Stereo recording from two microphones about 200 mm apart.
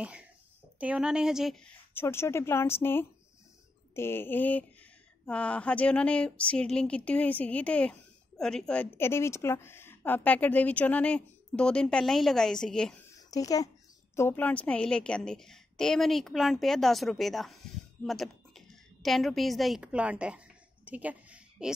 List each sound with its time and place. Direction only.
0.0 s a child's voice: 5° right (ahead or behind)
2.0 s a woman's voice: 10° left (ahead or behind)
13.3 s a woman's voice: 15° left (ahead or behind); by 21.7 s 5° right (ahead or behind)